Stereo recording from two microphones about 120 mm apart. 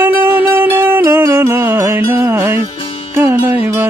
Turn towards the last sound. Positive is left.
turn(degrees=-15)  # may be behind; listen again after turning